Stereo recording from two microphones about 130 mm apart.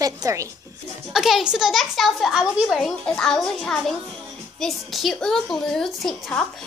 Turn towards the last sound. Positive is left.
turn(degrees=5)  # may be behind; listen again after turning